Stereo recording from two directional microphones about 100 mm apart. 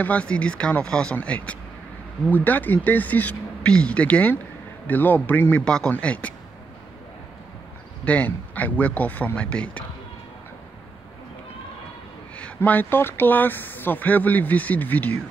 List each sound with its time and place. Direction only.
0.0 s speech: 15° left (ahead or behind)
8.0 s speech: 15° left (ahead or behind)
12.5 s speech: 20° left (ahead or behind)